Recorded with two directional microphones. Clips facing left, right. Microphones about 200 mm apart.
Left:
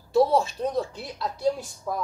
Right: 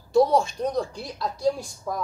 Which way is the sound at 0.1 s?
5° left (ahead or behind).